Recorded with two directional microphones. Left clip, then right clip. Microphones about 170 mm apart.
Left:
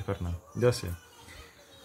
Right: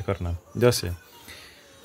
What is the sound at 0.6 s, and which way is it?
Speech, 50° right (ahead or behind).